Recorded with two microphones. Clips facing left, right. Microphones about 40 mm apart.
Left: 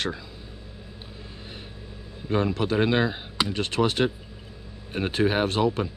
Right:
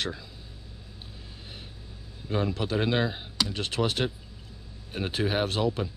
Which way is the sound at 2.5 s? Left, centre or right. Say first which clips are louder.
Left 4 dB; centre.